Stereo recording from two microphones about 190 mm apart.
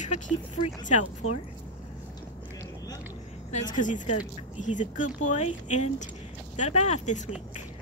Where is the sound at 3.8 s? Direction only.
40° left (ahead or behind).